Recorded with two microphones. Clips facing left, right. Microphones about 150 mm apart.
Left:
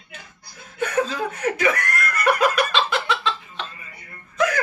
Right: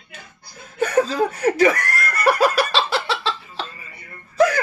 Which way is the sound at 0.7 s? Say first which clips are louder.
Right 5 dB; 35° right (ahead or behind).